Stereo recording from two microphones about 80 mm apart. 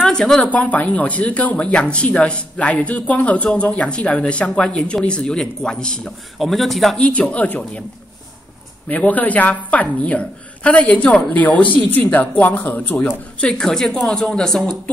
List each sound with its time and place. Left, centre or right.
0.0 s a man's voice: centre
7.0 s speech: centre
8.8 s a woman's voice: centre
13.4 s speech: centre